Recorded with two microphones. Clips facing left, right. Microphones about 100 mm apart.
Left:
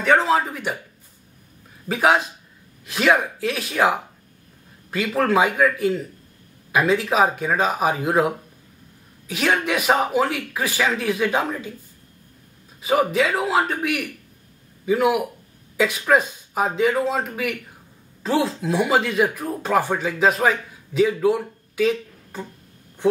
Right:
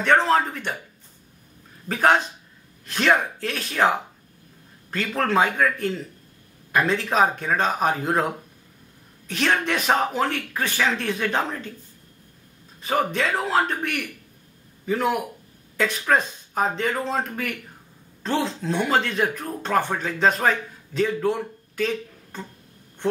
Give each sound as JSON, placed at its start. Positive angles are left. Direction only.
{"t": 0.0, "sound": "speech", "side_deg": 5}
{"t": 1.9, "sound": "speech", "side_deg": 5}
{"t": 12.8, "sound": "speech", "side_deg": 5}